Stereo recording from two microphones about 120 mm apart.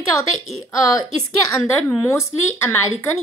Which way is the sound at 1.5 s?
20° left (ahead or behind).